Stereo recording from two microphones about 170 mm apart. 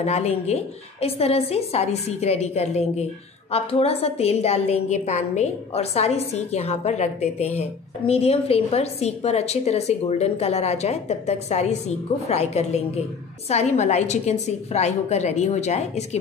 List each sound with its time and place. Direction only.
0.0 s a woman's voice: 40° left (ahead or behind)